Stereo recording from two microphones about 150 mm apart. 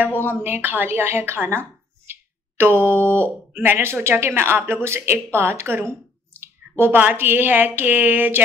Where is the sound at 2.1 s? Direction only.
15° right (ahead or behind).